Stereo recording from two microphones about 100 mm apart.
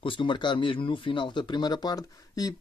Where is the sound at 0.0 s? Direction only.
55° left (ahead or behind).